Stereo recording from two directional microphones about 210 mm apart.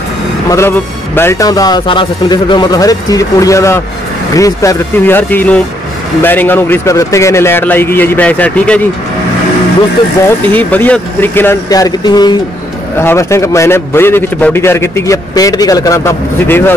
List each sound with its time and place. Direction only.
0.5 s a man's voice: 10° left (ahead or behind)
10.2 s a man's voice: 10° left (ahead or behind)